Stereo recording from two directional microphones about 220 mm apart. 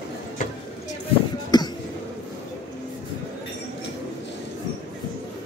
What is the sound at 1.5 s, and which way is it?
Cough, 20° left (ahead or behind).